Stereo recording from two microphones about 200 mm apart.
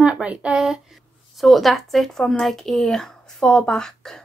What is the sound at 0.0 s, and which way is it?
A woman's voice, 5° right (ahead or behind).